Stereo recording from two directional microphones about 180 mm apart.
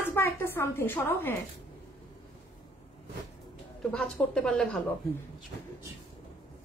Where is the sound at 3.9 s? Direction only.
5° left (ahead or behind).